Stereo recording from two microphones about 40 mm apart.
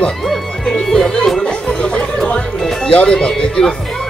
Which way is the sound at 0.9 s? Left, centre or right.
Centre.